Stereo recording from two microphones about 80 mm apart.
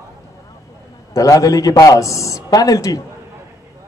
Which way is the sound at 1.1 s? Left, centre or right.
Left.